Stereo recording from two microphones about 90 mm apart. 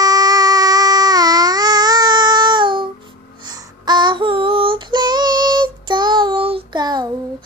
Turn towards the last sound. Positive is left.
turn(degrees=-50)  # may be behind; listen again after turning